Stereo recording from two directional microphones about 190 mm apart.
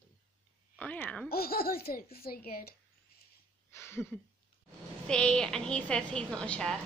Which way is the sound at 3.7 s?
15° left (ahead or behind).